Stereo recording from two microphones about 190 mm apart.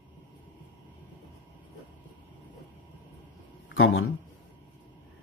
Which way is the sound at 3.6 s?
90° left.